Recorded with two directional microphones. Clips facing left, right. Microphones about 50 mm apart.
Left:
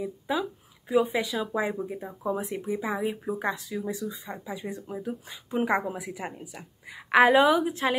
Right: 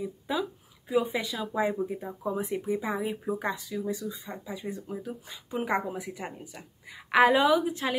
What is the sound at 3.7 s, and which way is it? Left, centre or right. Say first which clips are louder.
Speech: even; centre.